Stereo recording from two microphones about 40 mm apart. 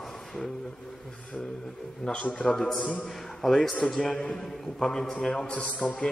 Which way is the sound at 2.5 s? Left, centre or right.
Centre.